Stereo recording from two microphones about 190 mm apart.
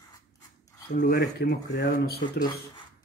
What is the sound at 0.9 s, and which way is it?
Speech, 60° left (ahead or behind).